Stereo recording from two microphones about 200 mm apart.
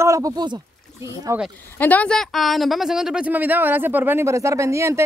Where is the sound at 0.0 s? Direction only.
15° right (ahead or behind).